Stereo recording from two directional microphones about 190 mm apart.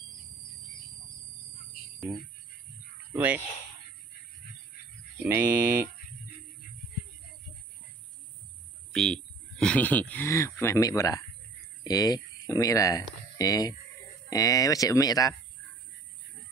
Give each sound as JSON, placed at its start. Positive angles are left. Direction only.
{"t": 3.1, "sound": "speech", "side_deg": -10}
{"t": 5.2, "sound": "speech", "side_deg": -10}
{"t": 8.9, "sound": "speech", "side_deg": 5}